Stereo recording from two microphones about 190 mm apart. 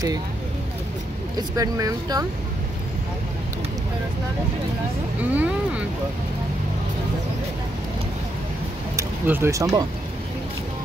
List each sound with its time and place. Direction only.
1.6 s speech: 20° right (ahead or behind)
5.3 s speech: 10° right (ahead or behind)
8.9 s speech: 10° right (ahead or behind)